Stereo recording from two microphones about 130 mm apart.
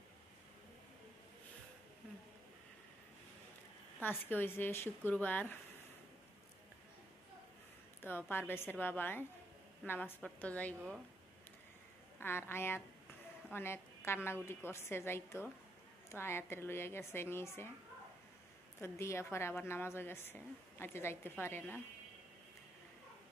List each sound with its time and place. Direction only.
4.0 s a woman's voice: 15° left (ahead or behind)
8.0 s a woman's voice: 15° left (ahead or behind)
12.2 s a woman's voice: 15° left (ahead or behind)
18.8 s a woman's voice: 20° left (ahead or behind)